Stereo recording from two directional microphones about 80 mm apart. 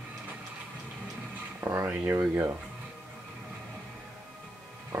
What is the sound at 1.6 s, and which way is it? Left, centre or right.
Speech, right.